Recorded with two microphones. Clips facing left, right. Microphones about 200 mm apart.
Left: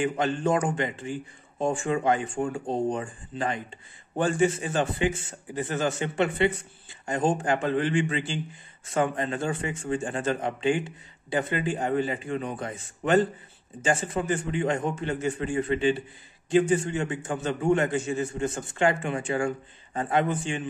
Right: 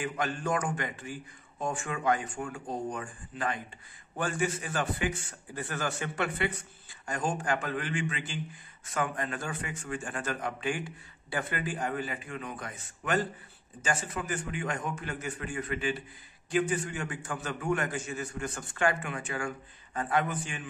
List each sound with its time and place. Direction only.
0.0 s a man's voice: 25° left (ahead or behind)